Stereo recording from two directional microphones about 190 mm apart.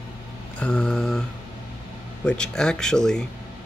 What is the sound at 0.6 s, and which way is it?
Speech, 5° left (ahead or behind).